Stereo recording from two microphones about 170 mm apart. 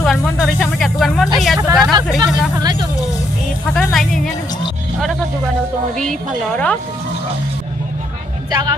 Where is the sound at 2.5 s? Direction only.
25° right (ahead or behind).